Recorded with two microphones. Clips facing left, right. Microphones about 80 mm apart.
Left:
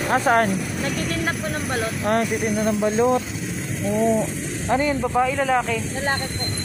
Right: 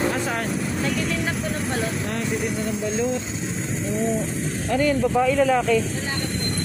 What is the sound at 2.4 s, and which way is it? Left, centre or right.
Speech, left.